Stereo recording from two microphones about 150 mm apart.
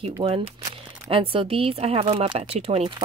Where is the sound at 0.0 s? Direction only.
40° right (ahead or behind).